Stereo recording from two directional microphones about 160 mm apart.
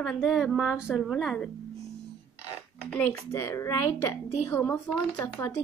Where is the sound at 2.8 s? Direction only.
10° left (ahead or behind).